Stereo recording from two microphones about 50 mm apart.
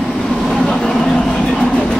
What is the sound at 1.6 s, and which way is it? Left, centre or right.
Vehicle, centre.